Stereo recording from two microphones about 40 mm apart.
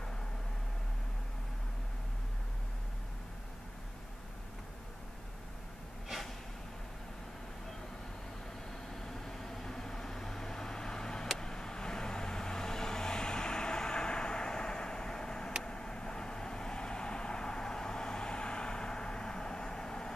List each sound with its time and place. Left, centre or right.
8.9 s vehicle: centre